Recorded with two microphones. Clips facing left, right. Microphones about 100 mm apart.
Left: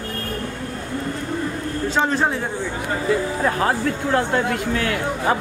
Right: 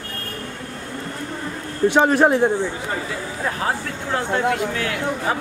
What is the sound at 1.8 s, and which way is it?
Speech, 15° right (ahead or behind).